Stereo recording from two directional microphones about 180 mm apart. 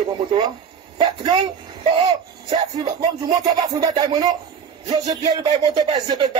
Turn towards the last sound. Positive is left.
turn(degrees=-30)  # may be behind; listen again after turning